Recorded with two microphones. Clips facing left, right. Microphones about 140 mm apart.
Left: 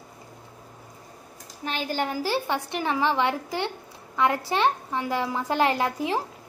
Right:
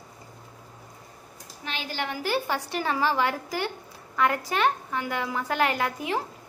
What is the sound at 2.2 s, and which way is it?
A woman's voice, 25° left (ahead or behind).